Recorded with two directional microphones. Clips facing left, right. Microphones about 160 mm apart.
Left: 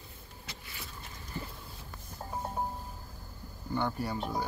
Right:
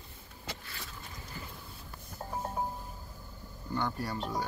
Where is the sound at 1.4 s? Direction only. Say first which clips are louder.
Left 6 dB; 25° left (ahead or behind).